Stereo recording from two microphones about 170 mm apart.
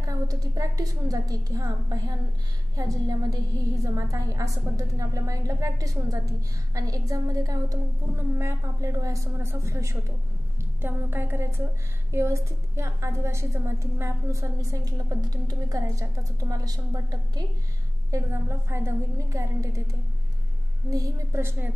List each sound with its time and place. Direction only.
0.0 s a woman's voice: 20° right (ahead or behind)